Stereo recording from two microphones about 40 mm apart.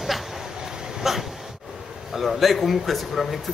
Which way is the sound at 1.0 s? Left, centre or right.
Centre.